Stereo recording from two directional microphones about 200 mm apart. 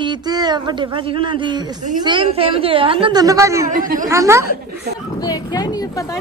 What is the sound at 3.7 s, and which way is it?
Speech, 40° right (ahead or behind).